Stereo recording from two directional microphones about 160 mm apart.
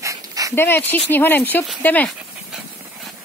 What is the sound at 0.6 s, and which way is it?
Speech, 15° left (ahead or behind).